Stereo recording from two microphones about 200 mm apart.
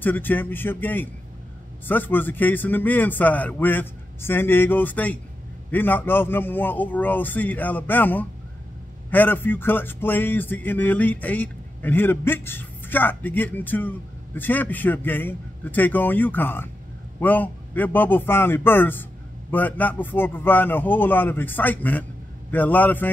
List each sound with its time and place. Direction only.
0.0 s music: 10° left (ahead or behind)